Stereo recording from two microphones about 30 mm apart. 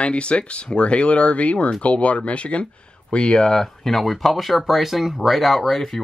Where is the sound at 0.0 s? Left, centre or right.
Left.